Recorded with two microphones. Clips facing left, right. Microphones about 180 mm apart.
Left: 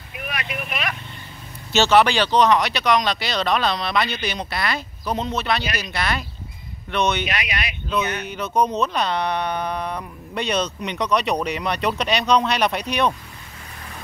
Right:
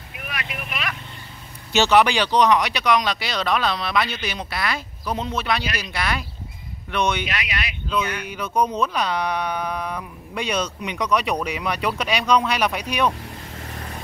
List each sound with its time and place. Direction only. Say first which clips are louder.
0.3 s vehicle: left 3 dB; 25° left (ahead or behind)
1.7 s speech: left 1 dB; 15° right (ahead or behind)
7.2 s speech: left 2 dB; 20° left (ahead or behind)
8.3 s speech: left 2 dB; 10° right (ahead or behind)